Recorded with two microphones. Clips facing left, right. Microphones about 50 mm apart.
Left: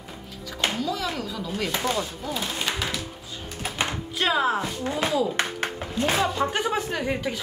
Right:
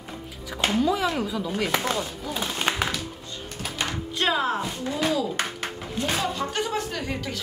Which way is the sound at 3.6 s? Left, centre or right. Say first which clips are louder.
Left 2 dB; left.